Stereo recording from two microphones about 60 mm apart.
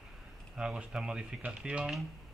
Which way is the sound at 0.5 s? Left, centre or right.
Centre.